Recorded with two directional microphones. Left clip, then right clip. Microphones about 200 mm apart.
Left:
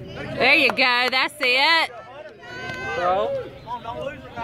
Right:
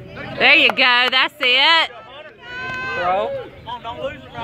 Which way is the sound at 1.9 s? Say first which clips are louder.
Right 1 dB; 30° right (ahead or behind).